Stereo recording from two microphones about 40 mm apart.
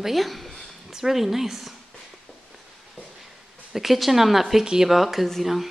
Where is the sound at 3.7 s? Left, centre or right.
Centre.